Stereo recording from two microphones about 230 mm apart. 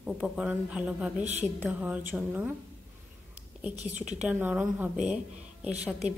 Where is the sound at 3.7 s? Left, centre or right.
Right.